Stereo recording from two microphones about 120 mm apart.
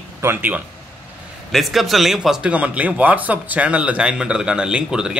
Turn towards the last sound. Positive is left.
turn(degrees=-5)  # may be behind; listen again after turning